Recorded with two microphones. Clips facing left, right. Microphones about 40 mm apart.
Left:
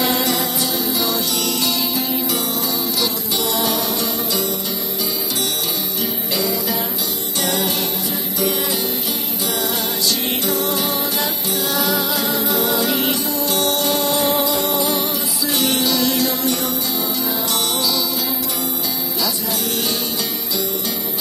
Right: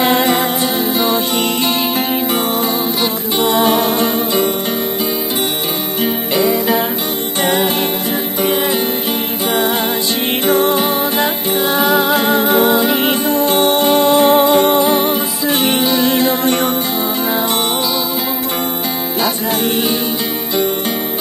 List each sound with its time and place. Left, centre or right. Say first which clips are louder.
0.0 s music: right 6 dB; right
3.0 s music: right 5 dB; right
6.3 s music: right 8 dB; right
10.4 s music: right 11 dB; right